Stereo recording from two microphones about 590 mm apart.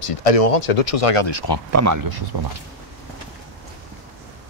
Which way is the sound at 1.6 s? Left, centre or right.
Right.